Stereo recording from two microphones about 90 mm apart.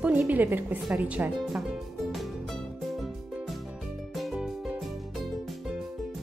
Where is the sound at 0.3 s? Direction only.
20° right (ahead or behind).